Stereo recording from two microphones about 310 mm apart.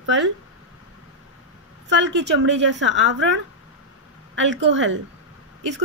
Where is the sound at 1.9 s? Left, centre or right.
Right.